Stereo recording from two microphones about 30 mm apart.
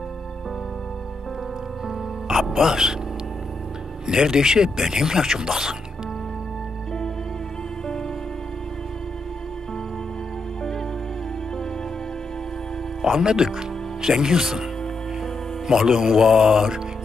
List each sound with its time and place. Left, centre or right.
2.4 s speech: centre
2.7 s speech: right
4.1 s speech: right
13.2 s speech: right